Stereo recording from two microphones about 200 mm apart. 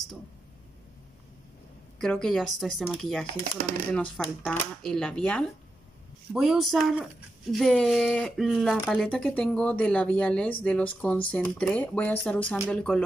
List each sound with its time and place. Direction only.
2.0 s speech: centre (ahead or behind)
3.5 s speech: 45° right (ahead or behind)
3.9 s speech: 5° left (ahead or behind)